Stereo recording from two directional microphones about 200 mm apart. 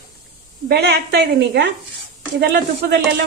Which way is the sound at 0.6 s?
55° right (ahead or behind).